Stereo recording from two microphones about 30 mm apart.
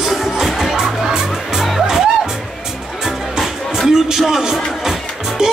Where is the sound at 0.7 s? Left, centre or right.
Centre.